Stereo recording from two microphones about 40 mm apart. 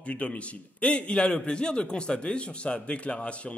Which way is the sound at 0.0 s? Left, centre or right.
Left.